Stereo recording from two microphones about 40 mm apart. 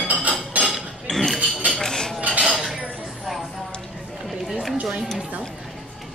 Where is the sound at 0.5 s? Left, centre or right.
Right.